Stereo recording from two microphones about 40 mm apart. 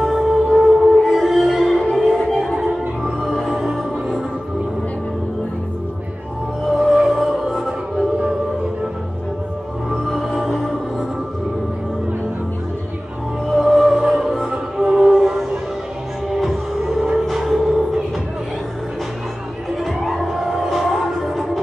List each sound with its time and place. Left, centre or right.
0.0 s music: centre
1.0 s music: centre
2.5 s music: centre
6.6 s music: centre
9.8 s music: centre
13.5 s music: centre
19.8 s music: centre